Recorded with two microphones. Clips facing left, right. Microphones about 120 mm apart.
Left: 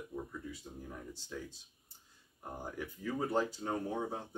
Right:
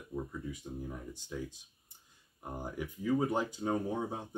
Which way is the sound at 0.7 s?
15° right (ahead or behind).